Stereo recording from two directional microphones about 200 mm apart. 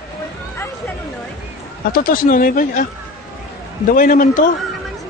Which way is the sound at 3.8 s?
45° left (ahead or behind).